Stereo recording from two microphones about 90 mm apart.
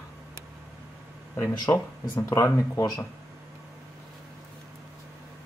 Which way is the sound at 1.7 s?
30° left (ahead or behind).